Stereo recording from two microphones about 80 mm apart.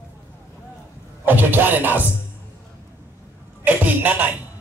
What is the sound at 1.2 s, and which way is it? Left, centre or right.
Speech, right.